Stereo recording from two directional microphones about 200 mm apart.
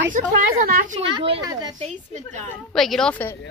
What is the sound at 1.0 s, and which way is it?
Speech, 25° right (ahead or behind).